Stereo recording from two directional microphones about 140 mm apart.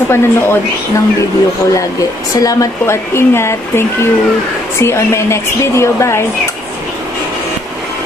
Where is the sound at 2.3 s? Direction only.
25° left (ahead or behind).